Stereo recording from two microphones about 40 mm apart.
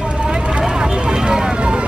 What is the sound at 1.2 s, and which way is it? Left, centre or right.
Speech, centre.